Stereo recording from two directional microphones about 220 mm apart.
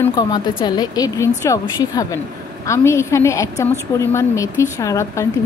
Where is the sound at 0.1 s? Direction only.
20° left (ahead or behind).